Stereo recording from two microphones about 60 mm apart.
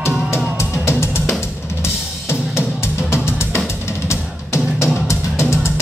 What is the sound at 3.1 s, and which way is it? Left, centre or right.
Music, left.